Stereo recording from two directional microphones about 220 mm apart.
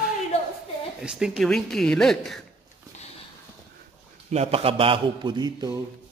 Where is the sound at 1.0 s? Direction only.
5° right (ahead or behind).